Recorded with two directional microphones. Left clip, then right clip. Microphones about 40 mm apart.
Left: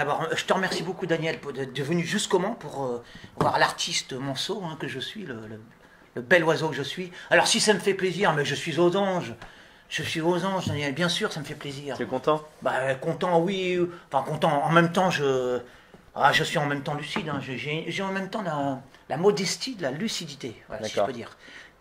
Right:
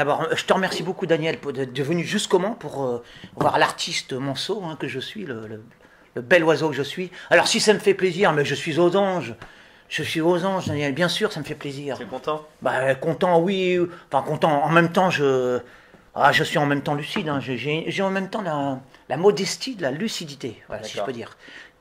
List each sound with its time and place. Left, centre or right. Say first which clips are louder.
0.0 s speech: right 5 dB; right
6.1 s speech: right 4 dB; centre
12.1 s speech: left 4 dB; left
12.4 s speech: right 3 dB; right